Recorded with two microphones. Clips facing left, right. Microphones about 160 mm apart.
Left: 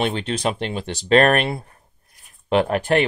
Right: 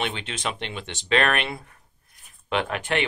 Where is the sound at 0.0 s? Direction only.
40° left (ahead or behind).